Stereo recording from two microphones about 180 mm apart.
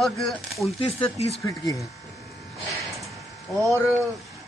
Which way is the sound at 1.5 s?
20° left (ahead or behind).